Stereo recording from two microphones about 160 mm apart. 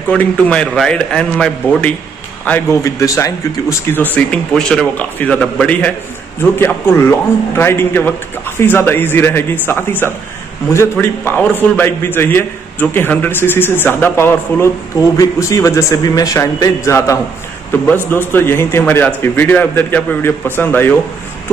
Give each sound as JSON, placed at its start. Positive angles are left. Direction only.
{"t": 0.1, "sound": "a man's voice", "side_deg": 5}